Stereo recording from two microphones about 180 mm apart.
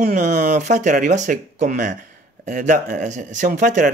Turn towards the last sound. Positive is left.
turn(degrees=-45)  # may be behind; listen again after turning